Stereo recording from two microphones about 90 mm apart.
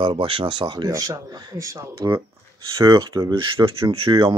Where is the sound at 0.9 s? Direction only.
40° right (ahead or behind).